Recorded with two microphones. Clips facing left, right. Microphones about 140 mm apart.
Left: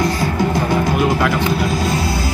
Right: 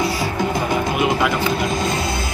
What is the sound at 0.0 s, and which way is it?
Music, 10° right (ahead or behind).